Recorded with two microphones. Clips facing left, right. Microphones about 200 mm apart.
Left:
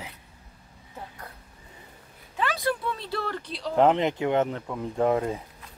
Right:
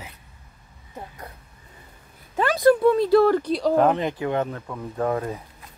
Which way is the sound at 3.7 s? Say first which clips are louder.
Left 3 dB; 20° left (ahead or behind).